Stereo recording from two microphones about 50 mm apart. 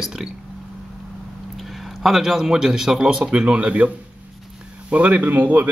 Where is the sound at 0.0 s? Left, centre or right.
Centre.